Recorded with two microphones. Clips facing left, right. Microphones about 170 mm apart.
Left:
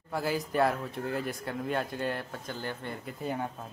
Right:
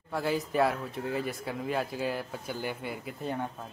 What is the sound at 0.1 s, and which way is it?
Speech, centre (ahead or behind).